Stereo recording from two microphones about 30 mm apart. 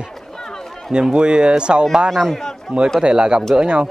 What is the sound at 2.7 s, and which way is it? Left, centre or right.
A man's voice, right.